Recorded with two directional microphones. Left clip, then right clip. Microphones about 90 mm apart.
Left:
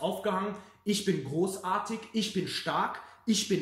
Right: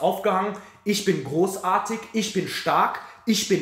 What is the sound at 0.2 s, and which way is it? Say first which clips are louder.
Speech: right 9 dB; 40° left (ahead or behind).